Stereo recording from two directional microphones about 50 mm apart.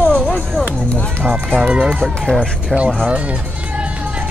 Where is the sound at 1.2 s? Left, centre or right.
Right.